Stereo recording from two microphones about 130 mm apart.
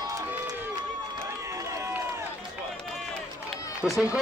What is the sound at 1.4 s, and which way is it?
Run, 25° right (ahead or behind).